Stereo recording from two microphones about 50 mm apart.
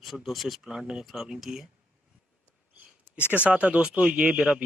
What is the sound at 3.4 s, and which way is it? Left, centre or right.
Speech, right.